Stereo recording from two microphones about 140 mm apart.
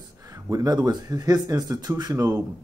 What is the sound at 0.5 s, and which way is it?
Speech, 25° right (ahead or behind).